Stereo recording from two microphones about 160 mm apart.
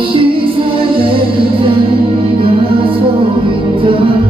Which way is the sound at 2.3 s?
35° right (ahead or behind).